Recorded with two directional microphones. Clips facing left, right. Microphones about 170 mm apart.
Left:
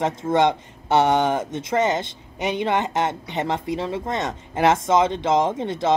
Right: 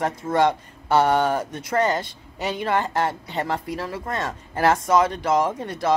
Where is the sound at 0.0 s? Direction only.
20° left (ahead or behind).